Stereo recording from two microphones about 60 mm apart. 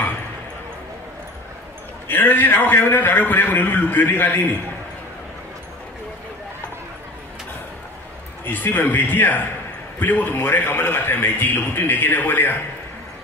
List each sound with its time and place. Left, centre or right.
2.0 s a man's voice: left
8.5 s a man's voice: left